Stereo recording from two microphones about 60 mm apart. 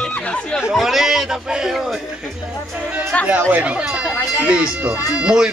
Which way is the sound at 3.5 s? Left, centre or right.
Centre.